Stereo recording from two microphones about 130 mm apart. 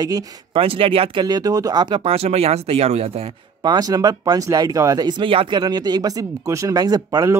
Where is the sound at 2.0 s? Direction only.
50° right (ahead or behind).